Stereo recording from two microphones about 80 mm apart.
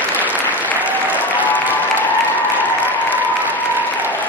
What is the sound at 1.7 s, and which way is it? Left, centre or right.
Applause, left.